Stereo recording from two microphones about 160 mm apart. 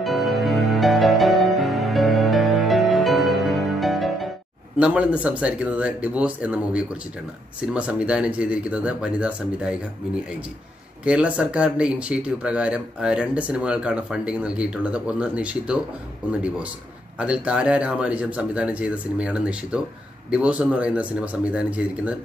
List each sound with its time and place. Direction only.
0.0 s music: centre (ahead or behind)
4.7 s speech: 5° right (ahead or behind)
11.1 s speech: 5° right (ahead or behind)
17.2 s speech: 5° right (ahead or behind)